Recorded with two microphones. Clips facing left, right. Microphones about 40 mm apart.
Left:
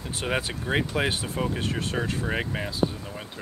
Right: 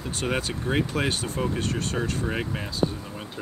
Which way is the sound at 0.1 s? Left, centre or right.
Centre.